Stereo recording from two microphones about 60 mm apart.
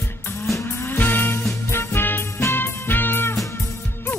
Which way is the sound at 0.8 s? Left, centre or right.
Left.